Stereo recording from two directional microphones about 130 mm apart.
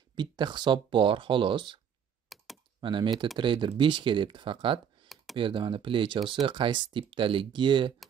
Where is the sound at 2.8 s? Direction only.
35° right (ahead or behind).